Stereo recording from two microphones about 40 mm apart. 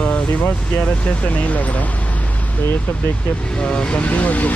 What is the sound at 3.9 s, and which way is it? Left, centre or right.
Speech, left.